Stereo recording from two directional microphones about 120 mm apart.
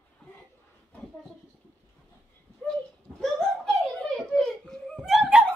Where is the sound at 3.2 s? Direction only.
5° left (ahead or behind).